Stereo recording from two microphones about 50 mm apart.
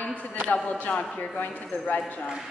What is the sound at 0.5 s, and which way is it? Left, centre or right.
A woman's voice, left.